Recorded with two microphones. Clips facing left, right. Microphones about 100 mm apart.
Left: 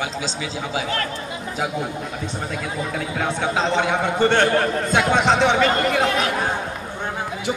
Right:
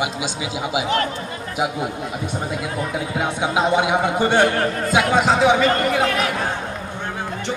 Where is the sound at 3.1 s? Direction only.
15° right (ahead or behind).